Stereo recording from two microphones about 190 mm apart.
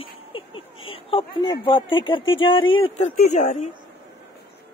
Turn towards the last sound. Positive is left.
turn(degrees=40)  # may be behind; listen again after turning